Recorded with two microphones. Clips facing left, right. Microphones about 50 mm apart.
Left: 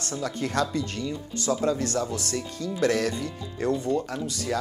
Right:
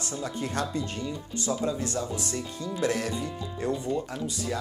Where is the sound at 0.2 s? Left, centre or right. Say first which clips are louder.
Left 4 dB; left.